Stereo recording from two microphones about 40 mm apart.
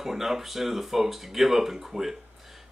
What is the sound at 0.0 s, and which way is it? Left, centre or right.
Speech, centre.